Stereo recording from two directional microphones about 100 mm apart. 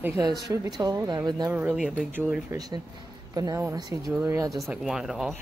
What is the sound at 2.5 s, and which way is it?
Speech, 40° right (ahead or behind).